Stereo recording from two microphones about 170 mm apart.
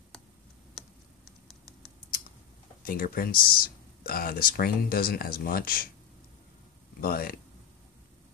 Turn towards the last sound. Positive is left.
turn(degrees=60)  # may be behind; listen again after turning